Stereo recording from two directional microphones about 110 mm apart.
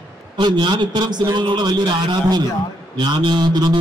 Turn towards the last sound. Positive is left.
turn(degrees=-40)  # may be behind; listen again after turning